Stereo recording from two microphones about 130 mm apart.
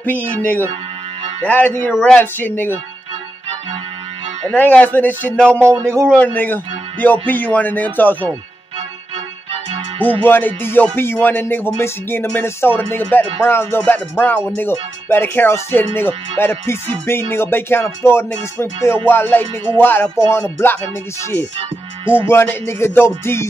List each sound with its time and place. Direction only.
0.4 s speech: 15° left (ahead or behind)
4.5 s speech: 10° left (ahead or behind)
9.9 s speech: 40° right (ahead or behind)
10.2 s speech: 15° left (ahead or behind)
20.2 s music: 20° left (ahead or behind)
22.1 s music: 20° left (ahead or behind)